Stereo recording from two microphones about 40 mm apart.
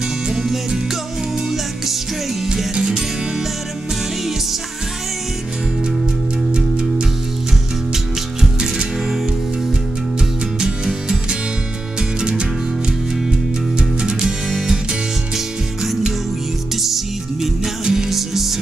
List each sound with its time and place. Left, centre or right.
0.3 s music: centre
6.5 s music: right
8.4 s music: centre
10.6 s music: centre
13.7 s music: centre
15.3 s music: centre